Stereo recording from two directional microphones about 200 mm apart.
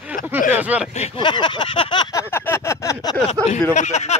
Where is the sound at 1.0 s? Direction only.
25° left (ahead or behind).